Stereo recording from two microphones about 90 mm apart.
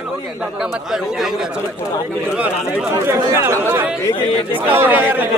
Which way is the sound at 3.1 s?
30° right (ahead or behind).